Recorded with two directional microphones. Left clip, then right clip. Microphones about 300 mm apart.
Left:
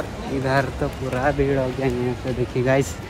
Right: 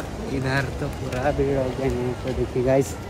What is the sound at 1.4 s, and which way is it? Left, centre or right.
Speech, left.